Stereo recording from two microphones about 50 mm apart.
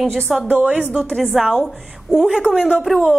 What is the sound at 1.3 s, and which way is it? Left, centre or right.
Speech, centre.